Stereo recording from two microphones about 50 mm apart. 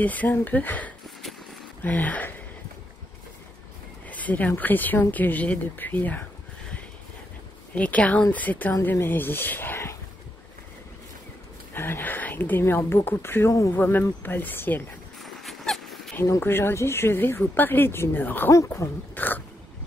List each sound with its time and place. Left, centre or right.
0.0 s a woman's voice: left
1.2 s a sound: centre
1.8 s speech: left
4.1 s a woman's voice: left
7.7 s a woman's voice: left
8.9 s speech: left
11.7 s speech: left
13.5 s speech: left
13.7 s a woman's voice: left
15.1 s dog: centre
16.3 s speech: left
18.1 s a woman's voice: left
18.8 s speech: left
19.1 s dog: left